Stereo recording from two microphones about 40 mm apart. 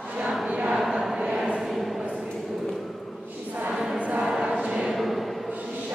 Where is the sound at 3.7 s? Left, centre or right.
Centre.